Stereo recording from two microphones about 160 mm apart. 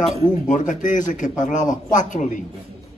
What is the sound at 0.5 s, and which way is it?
A man's voice, 55° left (ahead or behind).